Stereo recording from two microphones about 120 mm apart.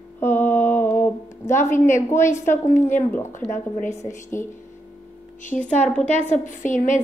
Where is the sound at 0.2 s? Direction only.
15° left (ahead or behind).